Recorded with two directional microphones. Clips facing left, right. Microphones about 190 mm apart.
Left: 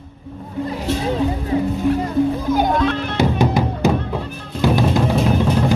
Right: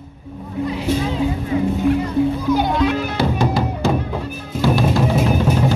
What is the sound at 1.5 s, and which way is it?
Speech, 35° left (ahead or behind).